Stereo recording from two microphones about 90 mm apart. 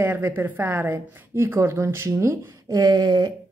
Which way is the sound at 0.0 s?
20° right (ahead or behind).